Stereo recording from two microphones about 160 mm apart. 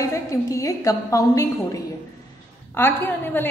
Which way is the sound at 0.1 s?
20° left (ahead or behind).